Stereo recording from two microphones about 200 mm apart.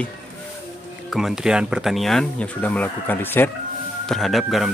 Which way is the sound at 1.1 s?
Centre (ahead or behind).